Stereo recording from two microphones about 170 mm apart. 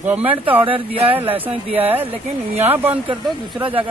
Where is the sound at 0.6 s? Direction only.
30° right (ahead or behind).